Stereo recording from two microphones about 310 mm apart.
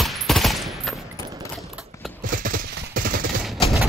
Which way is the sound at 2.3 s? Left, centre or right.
Right.